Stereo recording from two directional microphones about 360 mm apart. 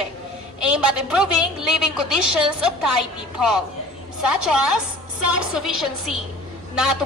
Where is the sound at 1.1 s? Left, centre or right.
Centre.